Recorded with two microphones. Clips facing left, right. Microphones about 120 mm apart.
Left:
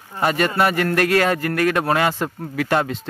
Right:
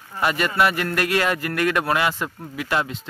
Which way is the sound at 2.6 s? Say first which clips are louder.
Left 4 dB; 45° left (ahead or behind).